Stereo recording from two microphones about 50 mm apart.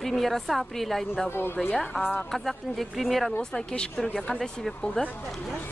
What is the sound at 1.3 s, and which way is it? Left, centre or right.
Speech, left.